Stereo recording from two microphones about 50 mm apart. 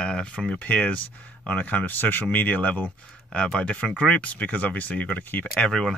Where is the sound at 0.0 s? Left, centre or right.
Centre.